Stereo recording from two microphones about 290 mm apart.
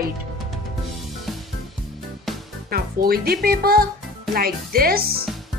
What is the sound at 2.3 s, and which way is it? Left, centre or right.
Music, centre.